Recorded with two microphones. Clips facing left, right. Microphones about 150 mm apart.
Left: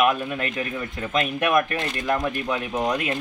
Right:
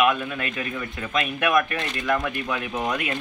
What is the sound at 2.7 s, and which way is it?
Speech, 10° left (ahead or behind).